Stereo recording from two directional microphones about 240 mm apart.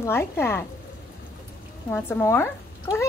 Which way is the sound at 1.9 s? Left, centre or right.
Centre.